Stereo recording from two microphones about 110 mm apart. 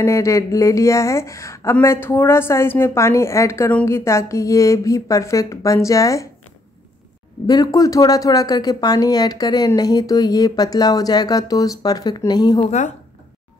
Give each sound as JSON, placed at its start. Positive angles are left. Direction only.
{"t": 0.0, "sound": "speech", "side_deg": 25}
{"t": 7.4, "sound": "speech", "side_deg": 35}
{"t": 12.5, "sound": "speech", "side_deg": 90}